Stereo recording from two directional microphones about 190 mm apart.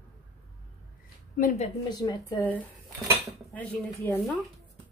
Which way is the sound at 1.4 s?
45° left (ahead or behind).